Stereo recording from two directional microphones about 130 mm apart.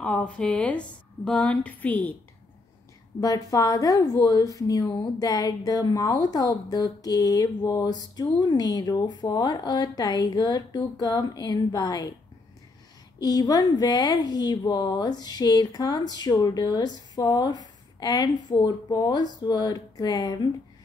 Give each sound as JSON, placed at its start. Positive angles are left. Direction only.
{"t": 0.0, "sound": "a woman's voice", "side_deg": 10}
{"t": 3.2, "sound": "a woman's voice", "side_deg": 25}
{"t": 13.2, "sound": "a woman's voice", "side_deg": 30}